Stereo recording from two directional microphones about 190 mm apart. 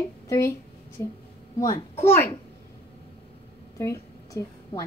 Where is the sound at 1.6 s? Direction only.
15° left (ahead or behind).